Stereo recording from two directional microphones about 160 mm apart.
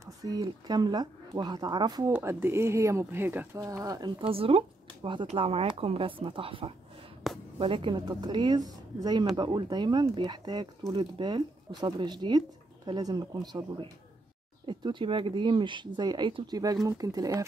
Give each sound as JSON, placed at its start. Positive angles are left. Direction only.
{"t": 0.0, "sound": "speech", "side_deg": -25}
{"t": 4.2, "sound": "a woman's voice", "side_deg": -35}